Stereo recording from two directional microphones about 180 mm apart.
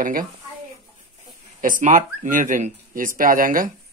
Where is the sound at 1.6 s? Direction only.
45° right (ahead or behind).